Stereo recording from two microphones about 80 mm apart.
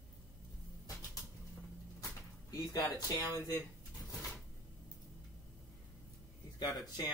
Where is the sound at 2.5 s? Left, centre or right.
Left.